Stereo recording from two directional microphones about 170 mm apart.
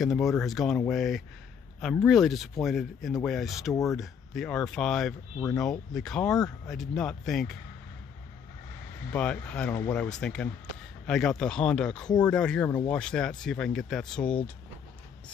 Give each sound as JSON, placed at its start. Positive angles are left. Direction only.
{"t": 0.0, "sound": "speech", "side_deg": 0}
{"t": 9.1, "sound": "speech", "side_deg": 5}